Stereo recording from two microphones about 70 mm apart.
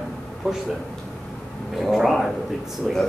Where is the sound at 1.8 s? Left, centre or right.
Centre.